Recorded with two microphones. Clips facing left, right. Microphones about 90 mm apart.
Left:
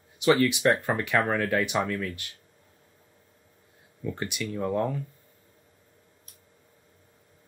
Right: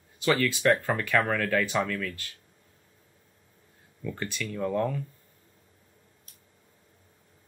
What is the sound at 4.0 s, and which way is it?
Speech, 20° left (ahead or behind).